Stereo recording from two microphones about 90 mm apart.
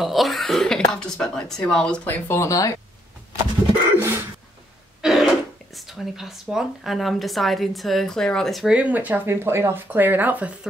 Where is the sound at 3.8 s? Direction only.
25° right (ahead or behind).